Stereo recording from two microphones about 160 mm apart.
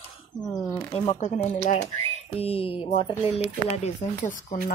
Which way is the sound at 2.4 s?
35° left (ahead or behind).